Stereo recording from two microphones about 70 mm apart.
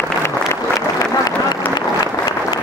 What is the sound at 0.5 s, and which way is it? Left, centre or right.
Applause, left.